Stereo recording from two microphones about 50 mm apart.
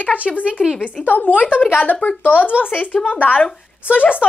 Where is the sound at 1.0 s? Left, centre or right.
Left.